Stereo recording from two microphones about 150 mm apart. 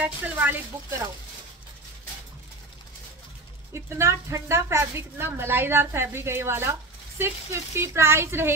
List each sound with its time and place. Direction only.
0.0 s a woman's voice: 10° right (ahead or behind)
3.7 s a woman's voice: 20° right (ahead or behind)